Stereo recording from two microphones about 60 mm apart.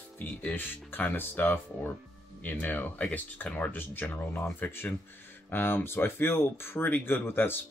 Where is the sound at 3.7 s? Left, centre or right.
Left.